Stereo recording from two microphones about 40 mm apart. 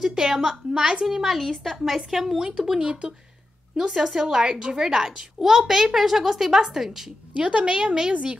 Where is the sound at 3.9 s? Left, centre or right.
Centre.